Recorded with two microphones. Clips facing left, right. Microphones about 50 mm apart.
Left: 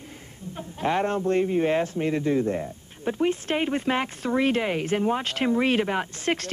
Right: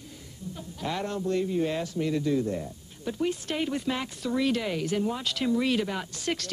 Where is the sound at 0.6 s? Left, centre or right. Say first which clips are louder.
Left 8 dB; left.